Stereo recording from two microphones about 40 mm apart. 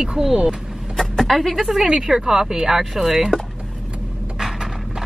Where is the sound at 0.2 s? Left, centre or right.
Centre.